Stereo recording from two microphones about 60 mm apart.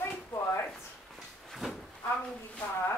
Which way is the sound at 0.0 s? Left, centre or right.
Left.